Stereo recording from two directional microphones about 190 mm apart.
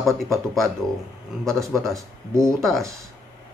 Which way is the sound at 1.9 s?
15° right (ahead or behind).